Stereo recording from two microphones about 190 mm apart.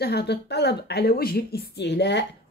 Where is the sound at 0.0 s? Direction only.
60° left (ahead or behind).